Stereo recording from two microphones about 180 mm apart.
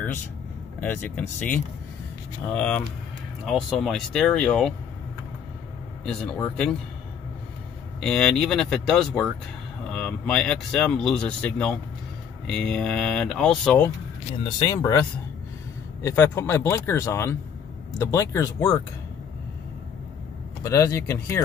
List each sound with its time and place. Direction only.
0.7 s speech: 10° left (ahead or behind)
6.0 s speech: 5° left (ahead or behind)
8.0 s speech: 5° left (ahead or behind)
14.4 s speech: 20° left (ahead or behind)
20.6 s speech: 15° left (ahead or behind)